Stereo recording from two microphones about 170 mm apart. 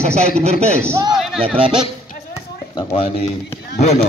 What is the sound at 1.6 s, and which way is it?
Speech, 30° right (ahead or behind).